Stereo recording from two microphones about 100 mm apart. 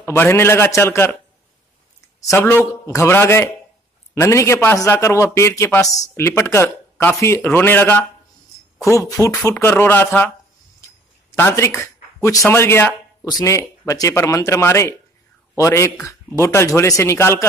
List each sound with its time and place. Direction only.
0.0 s speech: 25° left (ahead or behind)
2.3 s speech: 30° left (ahead or behind)
11.3 s speech: 25° left (ahead or behind)
13.2 s speech: 40° left (ahead or behind)